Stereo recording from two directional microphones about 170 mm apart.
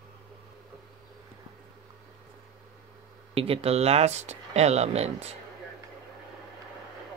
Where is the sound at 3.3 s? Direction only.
35° right (ahead or behind).